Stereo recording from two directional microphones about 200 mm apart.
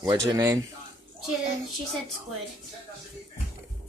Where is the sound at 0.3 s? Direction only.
15° right (ahead or behind).